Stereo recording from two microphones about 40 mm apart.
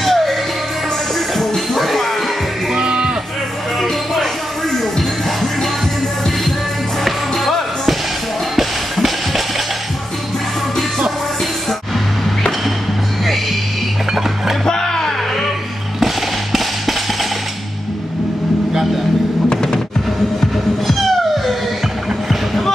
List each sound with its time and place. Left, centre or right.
0.0 s music: centre
1.4 s music: centre
2.7 s music: right
7.1 s music: centre
14.7 s a sound: centre
19.5 s music: centre
20.3 s music: centre